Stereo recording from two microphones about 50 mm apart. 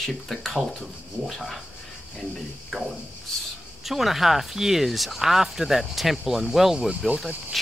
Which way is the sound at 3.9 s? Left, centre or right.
Centre.